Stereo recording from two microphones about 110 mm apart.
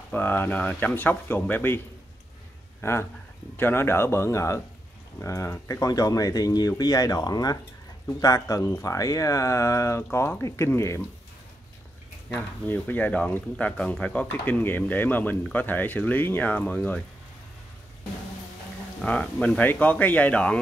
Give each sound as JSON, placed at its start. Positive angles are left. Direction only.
{"t": 0.1, "sound": "speech", "side_deg": 15}
{"t": 2.8, "sound": "speech", "side_deg": 25}
{"t": 12.3, "sound": "speech", "side_deg": 15}
{"t": 18.9, "sound": "speech", "side_deg": 10}